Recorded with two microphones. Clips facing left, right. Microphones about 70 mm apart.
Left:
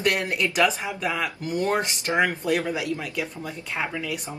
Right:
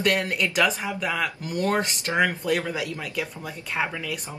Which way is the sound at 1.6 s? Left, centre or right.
Centre.